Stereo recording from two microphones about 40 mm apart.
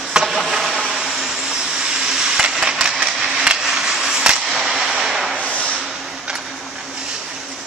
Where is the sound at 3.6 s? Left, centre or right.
Centre.